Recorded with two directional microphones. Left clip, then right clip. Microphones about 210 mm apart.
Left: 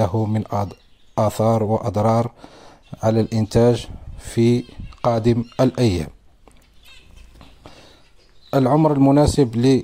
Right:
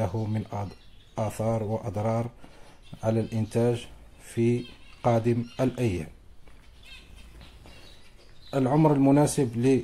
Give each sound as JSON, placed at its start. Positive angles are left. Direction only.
{"t": 0.0, "sound": "speech", "side_deg": 35}
{"t": 8.5, "sound": "speech", "side_deg": 35}